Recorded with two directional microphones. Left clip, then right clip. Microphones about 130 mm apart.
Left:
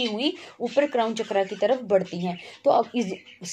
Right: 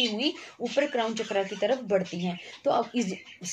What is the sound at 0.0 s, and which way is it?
Speech, 30° left (ahead or behind).